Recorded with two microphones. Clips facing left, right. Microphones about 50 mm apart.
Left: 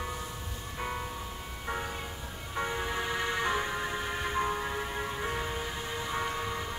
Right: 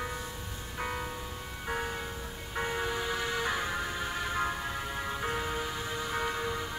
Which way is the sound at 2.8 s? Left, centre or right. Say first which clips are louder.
Left 1 dB; centre.